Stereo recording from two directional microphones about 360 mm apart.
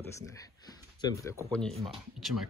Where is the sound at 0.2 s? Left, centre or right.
Centre.